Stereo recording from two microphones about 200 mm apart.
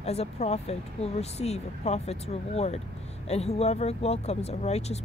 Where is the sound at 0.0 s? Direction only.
30° left (ahead or behind).